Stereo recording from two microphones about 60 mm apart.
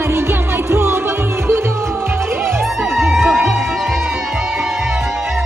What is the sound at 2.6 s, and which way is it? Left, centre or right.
Music, centre.